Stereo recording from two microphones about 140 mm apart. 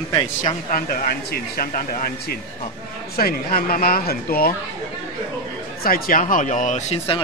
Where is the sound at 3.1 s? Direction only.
90° left.